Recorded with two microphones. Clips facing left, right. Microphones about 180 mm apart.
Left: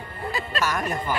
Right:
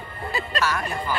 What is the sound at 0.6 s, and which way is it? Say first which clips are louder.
Speech: right 1 dB; 15° left (ahead or behind).